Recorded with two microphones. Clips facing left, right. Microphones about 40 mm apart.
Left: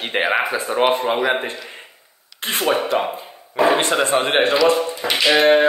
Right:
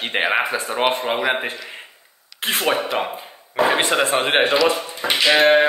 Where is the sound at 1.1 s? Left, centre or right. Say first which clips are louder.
Left 2 dB; centre.